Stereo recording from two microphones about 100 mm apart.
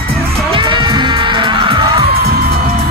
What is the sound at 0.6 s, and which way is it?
Music, 50° right (ahead or behind).